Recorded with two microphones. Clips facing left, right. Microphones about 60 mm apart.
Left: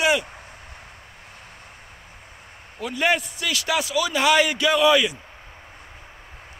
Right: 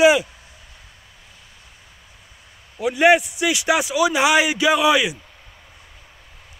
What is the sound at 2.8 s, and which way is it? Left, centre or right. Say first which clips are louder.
A man's voice: right 7 dB; centre.